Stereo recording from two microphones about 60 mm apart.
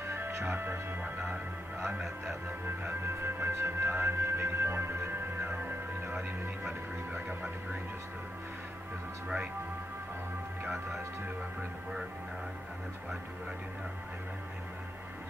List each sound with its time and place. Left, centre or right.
0.0 s music: right
2.6 s music: right